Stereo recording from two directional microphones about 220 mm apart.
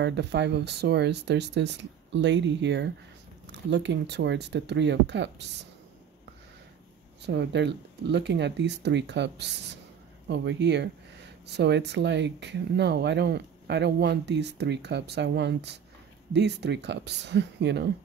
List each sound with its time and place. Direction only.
0.0 s speech: 50° right (ahead or behind)
7.2 s speech: 50° right (ahead or behind)